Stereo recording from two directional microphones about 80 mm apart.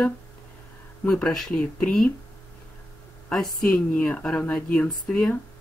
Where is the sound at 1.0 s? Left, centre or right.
Centre.